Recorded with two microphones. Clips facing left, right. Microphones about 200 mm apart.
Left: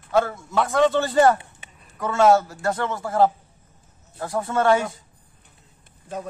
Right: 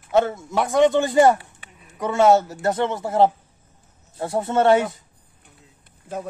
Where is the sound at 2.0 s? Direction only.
20° right (ahead or behind).